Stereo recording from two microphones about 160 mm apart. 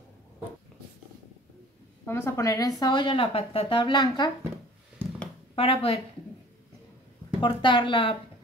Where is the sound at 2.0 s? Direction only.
15° left (ahead or behind).